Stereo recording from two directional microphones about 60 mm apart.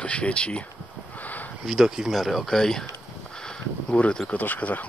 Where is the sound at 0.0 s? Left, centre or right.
Centre.